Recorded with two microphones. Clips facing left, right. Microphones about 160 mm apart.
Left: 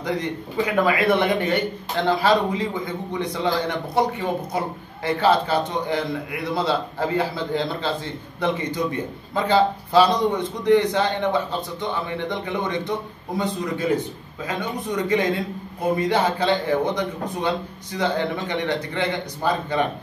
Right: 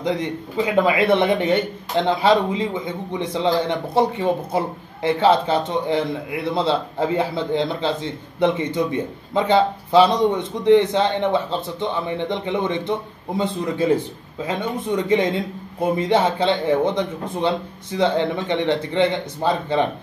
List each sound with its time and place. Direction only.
0.6 s speech: 25° right (ahead or behind)